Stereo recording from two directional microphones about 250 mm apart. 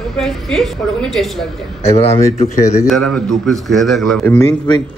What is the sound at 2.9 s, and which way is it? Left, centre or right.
A man's voice, centre.